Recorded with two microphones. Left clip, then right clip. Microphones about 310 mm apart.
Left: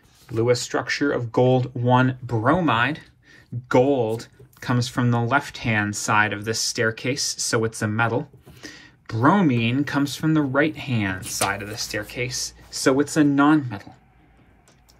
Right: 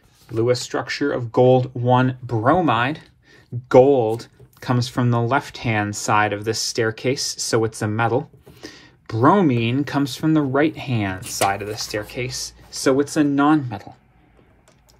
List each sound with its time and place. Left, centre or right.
0.4 s speech: centre